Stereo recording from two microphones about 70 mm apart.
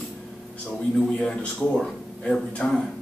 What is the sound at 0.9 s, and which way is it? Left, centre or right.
Speech, centre.